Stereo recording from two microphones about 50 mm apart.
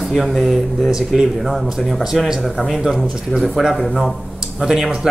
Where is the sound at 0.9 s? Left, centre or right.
Centre.